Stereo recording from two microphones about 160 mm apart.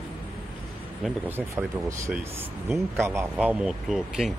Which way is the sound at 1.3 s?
15° right (ahead or behind).